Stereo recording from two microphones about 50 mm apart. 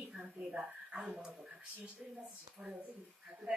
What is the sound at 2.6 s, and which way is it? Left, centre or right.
Speech, centre.